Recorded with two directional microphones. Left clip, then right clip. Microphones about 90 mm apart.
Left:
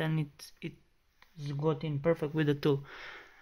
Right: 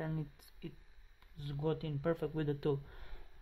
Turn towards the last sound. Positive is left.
turn(degrees=0)  # may be behind; listen again after turning